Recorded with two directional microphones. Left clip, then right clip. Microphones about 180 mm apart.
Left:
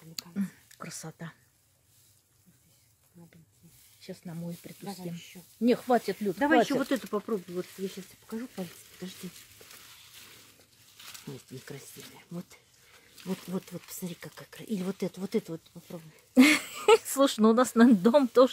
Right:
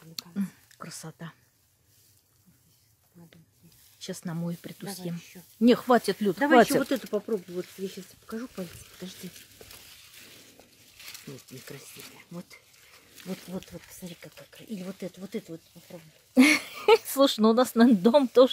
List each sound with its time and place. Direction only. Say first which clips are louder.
0.1 s a sound: right 1 dB; 5° right (ahead or behind)
4.0 s speech: right 6 dB; 25° right (ahead or behind)
5.1 s speech: right 2 dB; centre (ahead or behind)
5.6 s speech: right 4 dB; 25° right (ahead or behind)
6.1 s speech: right 4 dB; centre (ahead or behind)
7.1 s speech: right 2 dB; 15° left (ahead or behind)
7.9 s speech: right 2 dB; centre (ahead or behind)
10.0 s a sound: right 1 dB; centre (ahead or behind)
13.5 s speech: left 2 dB; 45° left (ahead or behind)
16.3 s speech: right 1 dB; centre (ahead or behind)